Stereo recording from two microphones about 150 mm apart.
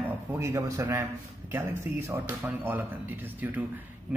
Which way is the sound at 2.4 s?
10° right (ahead or behind).